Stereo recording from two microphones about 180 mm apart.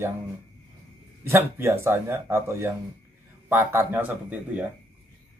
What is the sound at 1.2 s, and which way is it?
Speech, 15° right (ahead or behind).